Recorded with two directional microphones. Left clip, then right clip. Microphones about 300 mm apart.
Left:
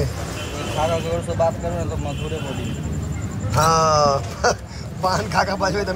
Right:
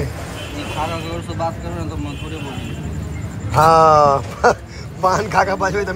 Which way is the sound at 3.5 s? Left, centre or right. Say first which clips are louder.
Right 6 dB; centre.